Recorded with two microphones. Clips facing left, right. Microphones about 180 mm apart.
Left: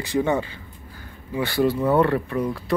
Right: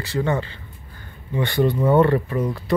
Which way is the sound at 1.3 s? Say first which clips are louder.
Right 1 dB; 5° left (ahead or behind).